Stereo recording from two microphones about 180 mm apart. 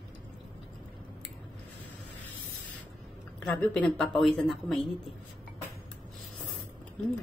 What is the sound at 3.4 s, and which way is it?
A woman's voice, 10° left (ahead or behind).